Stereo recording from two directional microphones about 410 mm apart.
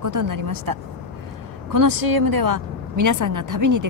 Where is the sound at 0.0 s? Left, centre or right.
Right.